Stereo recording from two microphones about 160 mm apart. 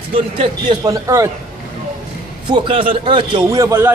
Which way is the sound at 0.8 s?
20° right (ahead or behind).